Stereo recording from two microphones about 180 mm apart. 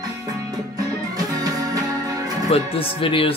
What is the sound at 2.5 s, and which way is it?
Speech, 30° left (ahead or behind).